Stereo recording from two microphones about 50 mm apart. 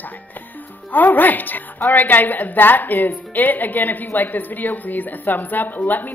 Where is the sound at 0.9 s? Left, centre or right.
Left.